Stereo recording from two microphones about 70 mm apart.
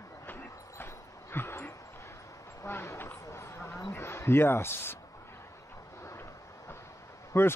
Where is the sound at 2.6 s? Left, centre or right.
Left.